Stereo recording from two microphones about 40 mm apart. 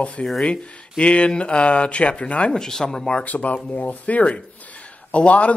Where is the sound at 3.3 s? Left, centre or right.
Left.